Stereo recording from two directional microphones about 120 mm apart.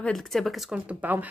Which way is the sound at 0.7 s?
15° right (ahead or behind).